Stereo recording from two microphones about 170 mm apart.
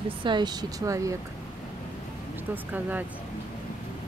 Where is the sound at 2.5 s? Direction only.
10° right (ahead or behind).